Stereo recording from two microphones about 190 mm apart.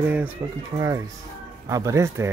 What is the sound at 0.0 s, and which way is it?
Speech, 10° right (ahead or behind).